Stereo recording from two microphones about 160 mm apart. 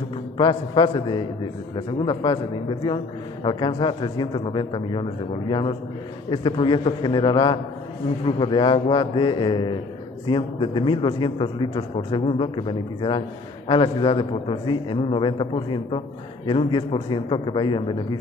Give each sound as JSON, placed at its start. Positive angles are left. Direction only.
{"t": 0.4, "sound": "a man's voice", "side_deg": 30}
{"t": 3.4, "sound": "a man's voice", "side_deg": 30}